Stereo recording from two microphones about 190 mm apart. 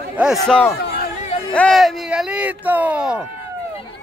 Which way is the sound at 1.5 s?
Centre (ahead or behind).